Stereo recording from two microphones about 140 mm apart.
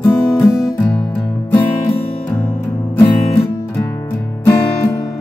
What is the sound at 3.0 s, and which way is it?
Music, 15° left (ahead or behind).